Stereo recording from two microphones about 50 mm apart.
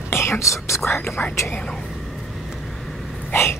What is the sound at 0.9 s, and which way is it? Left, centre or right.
Speech, left.